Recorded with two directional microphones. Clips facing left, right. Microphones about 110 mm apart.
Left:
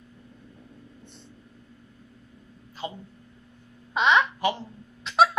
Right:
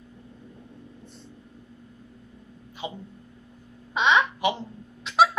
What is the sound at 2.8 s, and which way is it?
Hiccup, 20° right (ahead or behind).